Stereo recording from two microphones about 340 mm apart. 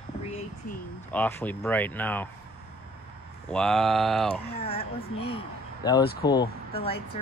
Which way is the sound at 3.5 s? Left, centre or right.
Centre.